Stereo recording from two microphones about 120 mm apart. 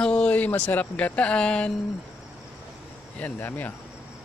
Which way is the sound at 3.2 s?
15° left (ahead or behind).